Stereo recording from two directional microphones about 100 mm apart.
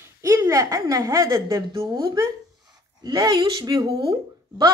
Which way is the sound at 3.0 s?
40° right (ahead or behind).